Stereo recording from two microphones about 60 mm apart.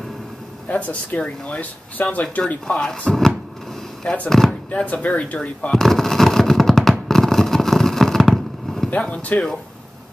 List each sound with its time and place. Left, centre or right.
0.7 s speech: left
2.4 s speech: centre
4.7 s speech: left
5.7 s fireworks: centre
8.9 s speech: left